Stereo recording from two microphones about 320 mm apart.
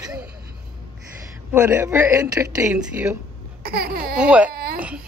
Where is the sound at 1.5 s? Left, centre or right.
Centre.